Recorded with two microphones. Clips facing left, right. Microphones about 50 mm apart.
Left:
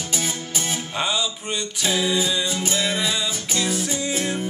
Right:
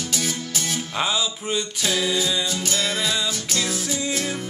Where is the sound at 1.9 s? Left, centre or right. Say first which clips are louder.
Left 1 dB; centre.